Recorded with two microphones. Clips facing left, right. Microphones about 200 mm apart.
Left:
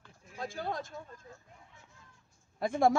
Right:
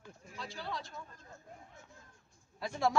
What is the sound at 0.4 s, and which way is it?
Speech, 50° left (ahead or behind).